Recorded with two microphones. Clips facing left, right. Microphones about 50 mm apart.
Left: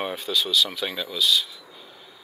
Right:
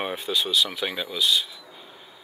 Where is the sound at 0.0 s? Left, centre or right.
Centre.